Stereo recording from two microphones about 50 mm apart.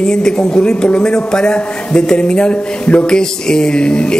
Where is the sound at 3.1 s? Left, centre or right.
Centre.